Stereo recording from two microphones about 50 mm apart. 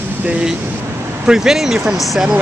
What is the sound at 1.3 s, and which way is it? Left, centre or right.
Speech, centre.